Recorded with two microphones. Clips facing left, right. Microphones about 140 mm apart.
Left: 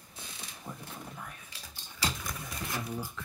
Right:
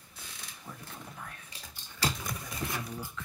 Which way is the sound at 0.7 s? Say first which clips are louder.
Left 3 dB; 25° left (ahead or behind).